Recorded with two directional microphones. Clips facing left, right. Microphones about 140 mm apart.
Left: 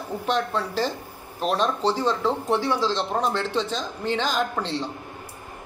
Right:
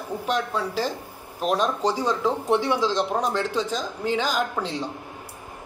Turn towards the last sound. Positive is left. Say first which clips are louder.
# even
turn(degrees=-10)  # may be behind; listen again after turning